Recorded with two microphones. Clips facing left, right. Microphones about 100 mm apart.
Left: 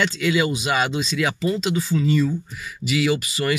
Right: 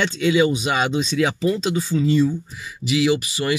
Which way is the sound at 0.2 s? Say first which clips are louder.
Right 4 dB; 25° right (ahead or behind).